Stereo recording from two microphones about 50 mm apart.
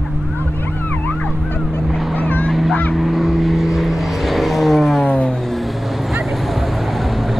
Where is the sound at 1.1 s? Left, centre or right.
Left.